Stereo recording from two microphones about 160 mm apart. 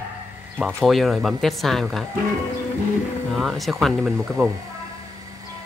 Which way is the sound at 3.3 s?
Centre (ahead or behind).